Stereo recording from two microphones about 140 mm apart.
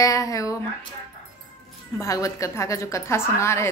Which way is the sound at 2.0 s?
25° left (ahead or behind).